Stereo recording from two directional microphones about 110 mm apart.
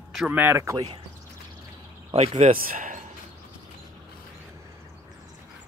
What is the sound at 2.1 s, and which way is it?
Speech, 65° right (ahead or behind).